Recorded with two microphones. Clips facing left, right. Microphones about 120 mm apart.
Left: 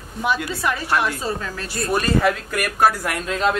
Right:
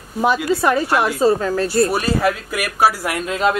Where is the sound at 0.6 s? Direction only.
40° right (ahead or behind).